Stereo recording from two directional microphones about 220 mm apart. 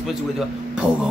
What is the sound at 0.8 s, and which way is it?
Speech, 15° right (ahead or behind).